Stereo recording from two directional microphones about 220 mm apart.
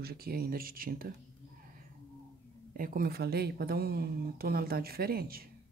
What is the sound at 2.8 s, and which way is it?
Speech, 40° right (ahead or behind).